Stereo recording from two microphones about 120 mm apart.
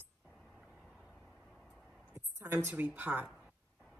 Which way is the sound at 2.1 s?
20° right (ahead or behind).